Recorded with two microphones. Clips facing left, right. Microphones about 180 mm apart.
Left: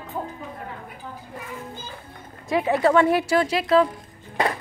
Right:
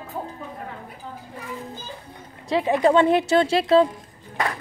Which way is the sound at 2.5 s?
20° right (ahead or behind).